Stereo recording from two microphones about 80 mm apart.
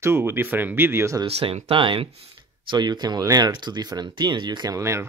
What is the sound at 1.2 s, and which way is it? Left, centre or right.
Speech, right.